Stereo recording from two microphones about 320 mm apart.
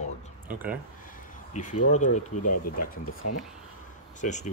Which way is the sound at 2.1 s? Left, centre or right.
Left.